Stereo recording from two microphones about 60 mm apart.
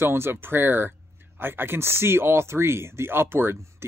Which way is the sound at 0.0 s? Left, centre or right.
Right.